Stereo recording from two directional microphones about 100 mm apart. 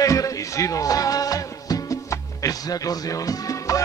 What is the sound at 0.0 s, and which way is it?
Music, 35° left (ahead or behind).